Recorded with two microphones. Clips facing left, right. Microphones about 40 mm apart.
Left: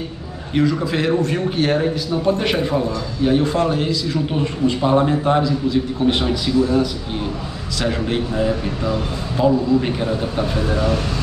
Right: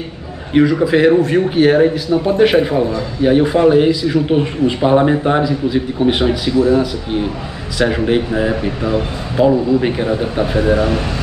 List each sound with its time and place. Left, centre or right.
0.5 s a man's voice: centre